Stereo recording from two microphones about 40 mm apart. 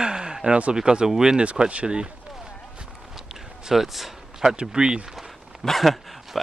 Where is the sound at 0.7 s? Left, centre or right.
Right.